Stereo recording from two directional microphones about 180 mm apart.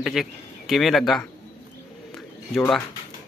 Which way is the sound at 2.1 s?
5° left (ahead or behind).